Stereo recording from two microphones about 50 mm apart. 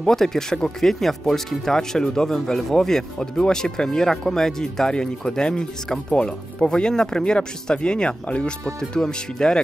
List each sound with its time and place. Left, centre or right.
0.0 s speech: centre